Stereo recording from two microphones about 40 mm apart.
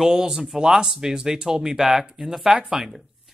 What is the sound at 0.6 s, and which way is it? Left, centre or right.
Speech, centre.